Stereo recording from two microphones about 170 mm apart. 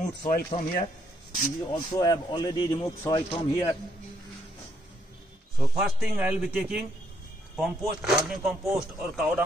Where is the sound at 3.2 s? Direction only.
35° left (ahead or behind).